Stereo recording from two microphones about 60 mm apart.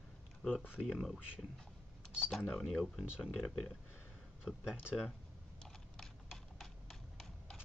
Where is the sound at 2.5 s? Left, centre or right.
Centre.